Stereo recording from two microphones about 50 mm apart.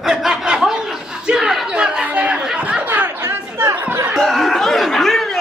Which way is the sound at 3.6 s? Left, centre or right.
Right.